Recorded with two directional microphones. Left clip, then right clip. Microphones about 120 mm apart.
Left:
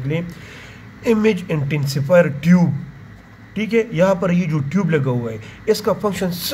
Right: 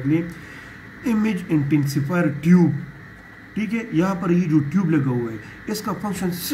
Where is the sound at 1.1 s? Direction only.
90° left.